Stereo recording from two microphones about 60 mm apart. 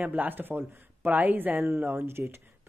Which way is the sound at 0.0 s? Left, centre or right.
Right.